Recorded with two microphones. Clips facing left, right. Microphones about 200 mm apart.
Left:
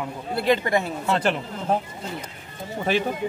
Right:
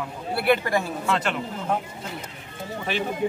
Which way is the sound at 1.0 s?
30° left (ahead or behind).